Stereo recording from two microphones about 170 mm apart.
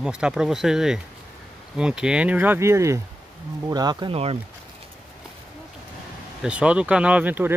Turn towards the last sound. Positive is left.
turn(degrees=-10)  # may be behind; listen again after turning